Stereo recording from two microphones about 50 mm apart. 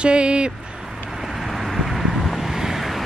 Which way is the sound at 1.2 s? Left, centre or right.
Centre.